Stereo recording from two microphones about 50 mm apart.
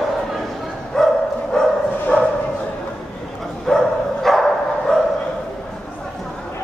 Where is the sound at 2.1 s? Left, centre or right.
Left.